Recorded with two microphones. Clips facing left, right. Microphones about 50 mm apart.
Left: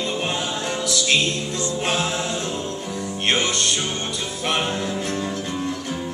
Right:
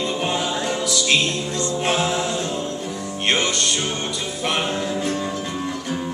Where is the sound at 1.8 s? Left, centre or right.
Centre.